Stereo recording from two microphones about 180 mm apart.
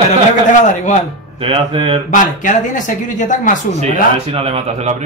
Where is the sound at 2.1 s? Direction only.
45° left (ahead or behind).